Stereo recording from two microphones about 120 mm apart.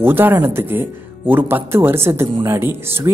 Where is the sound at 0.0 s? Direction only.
15° right (ahead or behind).